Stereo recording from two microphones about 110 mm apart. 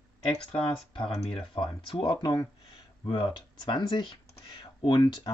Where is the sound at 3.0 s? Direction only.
50° left (ahead or behind).